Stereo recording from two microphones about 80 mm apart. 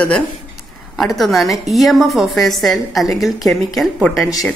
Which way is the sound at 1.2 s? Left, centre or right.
Centre.